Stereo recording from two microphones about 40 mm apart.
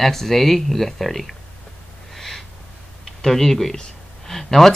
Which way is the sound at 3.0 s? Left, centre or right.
Centre.